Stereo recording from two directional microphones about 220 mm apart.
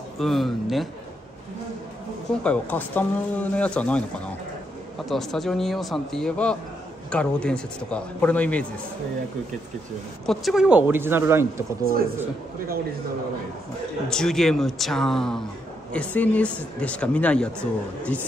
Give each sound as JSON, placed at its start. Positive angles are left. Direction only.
{"t": 0.2, "sound": "speech", "side_deg": 0}
{"t": 2.4, "sound": "speech", "side_deg": 5}
{"t": 5.0, "sound": "speech", "side_deg": 0}
{"t": 10.2, "sound": "speech", "side_deg": 0}
{"t": 11.8, "sound": "speech", "side_deg": -40}
{"t": 14.0, "sound": "speech", "side_deg": 0}